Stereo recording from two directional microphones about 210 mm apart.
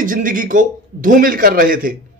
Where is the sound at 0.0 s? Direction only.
40° right (ahead or behind).